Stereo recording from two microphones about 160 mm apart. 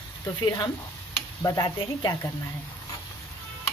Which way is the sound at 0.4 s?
25° left (ahead or behind).